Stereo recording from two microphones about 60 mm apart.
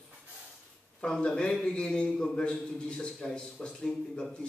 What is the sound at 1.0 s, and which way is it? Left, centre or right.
A man's voice, centre.